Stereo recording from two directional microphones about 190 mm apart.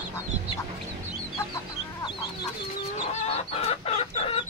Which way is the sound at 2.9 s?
35° left (ahead or behind).